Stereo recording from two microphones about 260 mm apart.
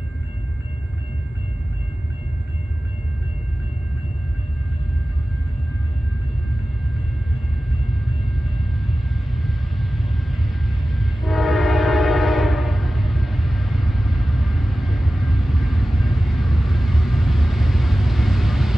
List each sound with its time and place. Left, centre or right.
7.9 s vehicle: centre